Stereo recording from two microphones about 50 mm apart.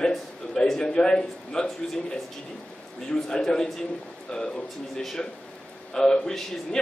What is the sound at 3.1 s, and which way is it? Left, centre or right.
Speech, centre.